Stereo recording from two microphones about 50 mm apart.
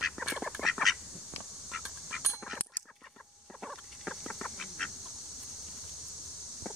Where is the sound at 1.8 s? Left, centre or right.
Centre.